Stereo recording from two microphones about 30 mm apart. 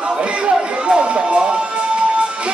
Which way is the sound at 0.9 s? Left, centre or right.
Right.